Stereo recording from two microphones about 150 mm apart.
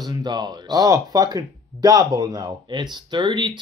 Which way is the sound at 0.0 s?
25° right (ahead or behind).